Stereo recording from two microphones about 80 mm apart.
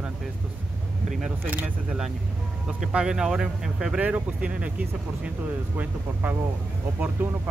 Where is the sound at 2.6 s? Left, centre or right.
Centre.